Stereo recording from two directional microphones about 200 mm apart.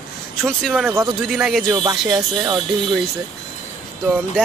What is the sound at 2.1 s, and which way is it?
Speech, 20° right (ahead or behind).